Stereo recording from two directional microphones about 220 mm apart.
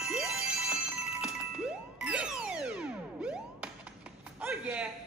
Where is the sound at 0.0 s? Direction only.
Centre (ahead or behind).